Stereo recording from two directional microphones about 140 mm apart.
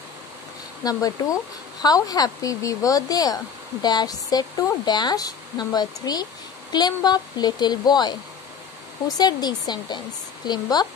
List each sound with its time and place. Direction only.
0.8 s speech: 25° left (ahead or behind)